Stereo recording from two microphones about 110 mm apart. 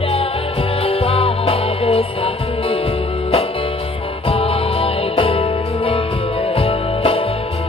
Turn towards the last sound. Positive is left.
turn(degrees=60)  # may be behind; listen again after turning